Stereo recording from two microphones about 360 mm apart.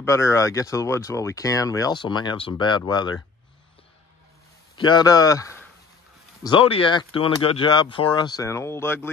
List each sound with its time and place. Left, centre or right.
0.0 s speech: centre
4.7 s speech: centre